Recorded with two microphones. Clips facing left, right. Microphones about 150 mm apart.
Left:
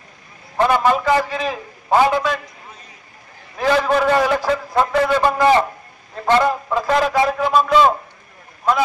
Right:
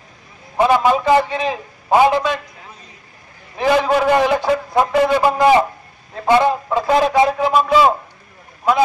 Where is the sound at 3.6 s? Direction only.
10° right (ahead or behind).